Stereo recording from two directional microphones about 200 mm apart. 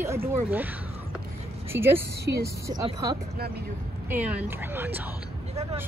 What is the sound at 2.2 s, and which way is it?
Speech, 55° right (ahead or behind).